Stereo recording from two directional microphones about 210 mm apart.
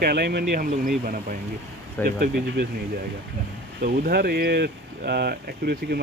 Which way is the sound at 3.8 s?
45° right (ahead or behind).